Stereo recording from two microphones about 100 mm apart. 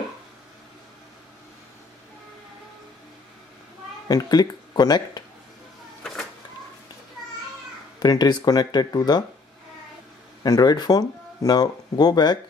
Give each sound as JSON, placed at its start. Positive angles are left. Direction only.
{"t": 4.1, "sound": "speech", "side_deg": 40}
{"t": 8.0, "sound": "speech", "side_deg": 45}
{"t": 10.4, "sound": "speech", "side_deg": 40}